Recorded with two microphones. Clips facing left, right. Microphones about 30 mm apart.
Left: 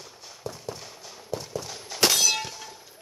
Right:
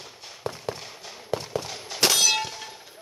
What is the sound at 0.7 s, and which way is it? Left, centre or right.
Fireworks, right.